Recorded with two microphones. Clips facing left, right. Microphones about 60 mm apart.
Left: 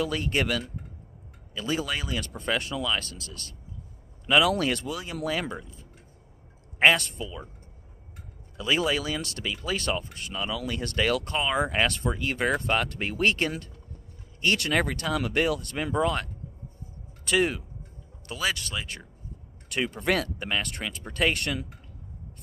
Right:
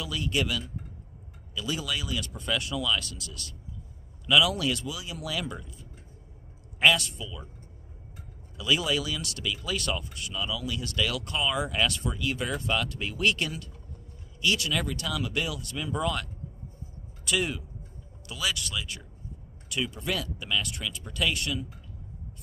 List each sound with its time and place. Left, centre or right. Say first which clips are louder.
0.0 s speech: left 3 dB; left
5.5 s speech: left 3 dB; left
8.5 s speech: left 1 dB; left